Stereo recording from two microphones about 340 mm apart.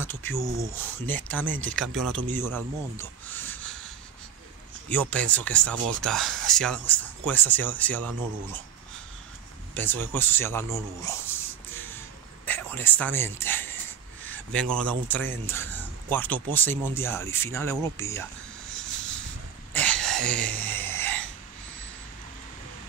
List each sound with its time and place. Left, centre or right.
0.0 s speech: centre
1.9 s speech: right
2.3 s speech: centre
4.8 s speech: centre
9.8 s speech: centre
12.4 s a sound: centre
14.2 s speech: centre
19.7 s a sound: centre